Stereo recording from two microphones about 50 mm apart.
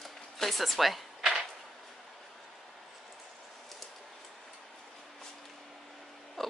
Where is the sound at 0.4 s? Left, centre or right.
Centre.